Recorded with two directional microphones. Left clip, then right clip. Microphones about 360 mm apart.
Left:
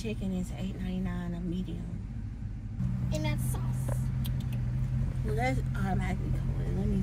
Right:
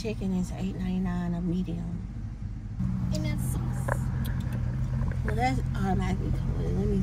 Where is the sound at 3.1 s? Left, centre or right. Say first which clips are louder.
Left 2 dB; left.